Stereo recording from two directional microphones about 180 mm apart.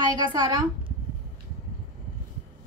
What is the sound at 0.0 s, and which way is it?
Speech, 25° right (ahead or behind).